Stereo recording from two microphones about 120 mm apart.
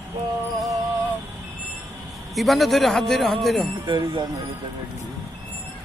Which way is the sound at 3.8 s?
40° right (ahead or behind).